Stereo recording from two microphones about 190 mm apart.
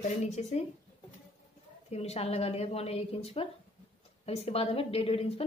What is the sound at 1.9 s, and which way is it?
A woman's voice, 35° left (ahead or behind).